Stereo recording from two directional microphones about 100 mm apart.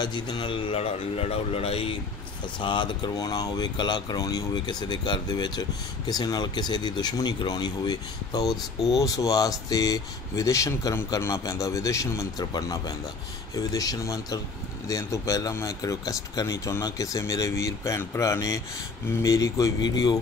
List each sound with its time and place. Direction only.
0.0 s speech: 50° left (ahead or behind); by 2.0 s 80° left
2.6 s speech: 50° left (ahead or behind)